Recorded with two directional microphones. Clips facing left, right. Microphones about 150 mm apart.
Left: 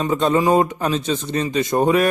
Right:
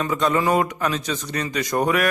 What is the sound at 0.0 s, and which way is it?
Speech, 30° left (ahead or behind).